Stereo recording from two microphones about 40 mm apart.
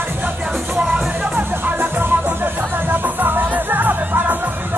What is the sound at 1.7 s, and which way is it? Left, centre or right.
Music, right.